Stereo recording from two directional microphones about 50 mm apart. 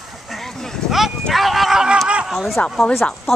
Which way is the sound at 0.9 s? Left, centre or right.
Centre.